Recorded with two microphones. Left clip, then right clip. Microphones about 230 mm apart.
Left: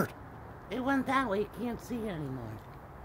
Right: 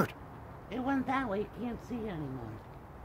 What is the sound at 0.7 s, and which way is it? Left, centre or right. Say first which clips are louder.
Speech: left 2 dB; left.